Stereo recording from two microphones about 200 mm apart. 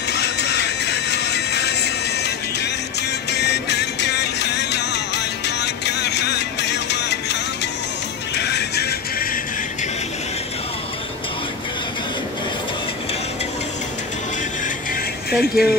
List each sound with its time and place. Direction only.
0.1 s music: 55° left (ahead or behind)
8.4 s music: 55° left (ahead or behind)
15.3 s speech: centre (ahead or behind)